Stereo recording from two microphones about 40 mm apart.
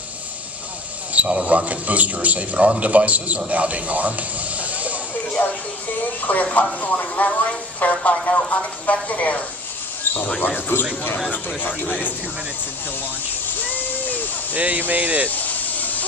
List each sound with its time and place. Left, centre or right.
1.1 s a man's voice: right
6.2 s speech: left
10.0 s a sound: left
10.7 s speech: left
11.2 s speech: left
13.6 s a sound: left
14.5 s a man's voice: right
15.2 s hiss: left